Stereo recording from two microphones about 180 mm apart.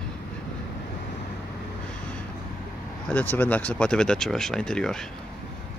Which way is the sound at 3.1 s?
10° left (ahead or behind).